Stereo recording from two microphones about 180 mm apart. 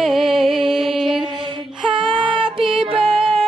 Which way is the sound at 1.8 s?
30° right (ahead or behind).